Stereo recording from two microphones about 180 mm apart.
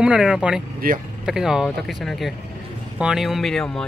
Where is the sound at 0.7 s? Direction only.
50° right (ahead or behind).